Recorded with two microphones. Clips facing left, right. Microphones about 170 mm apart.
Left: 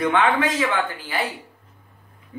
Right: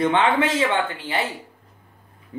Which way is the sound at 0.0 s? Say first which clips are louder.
Right 1 dB; 25° right (ahead or behind).